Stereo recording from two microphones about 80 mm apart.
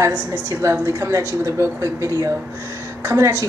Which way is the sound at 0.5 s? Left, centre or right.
Right.